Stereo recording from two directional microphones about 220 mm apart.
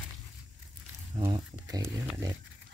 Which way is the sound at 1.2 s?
15° right (ahead or behind).